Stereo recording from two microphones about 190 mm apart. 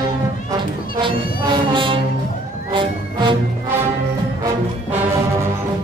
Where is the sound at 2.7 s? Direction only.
25° right (ahead or behind).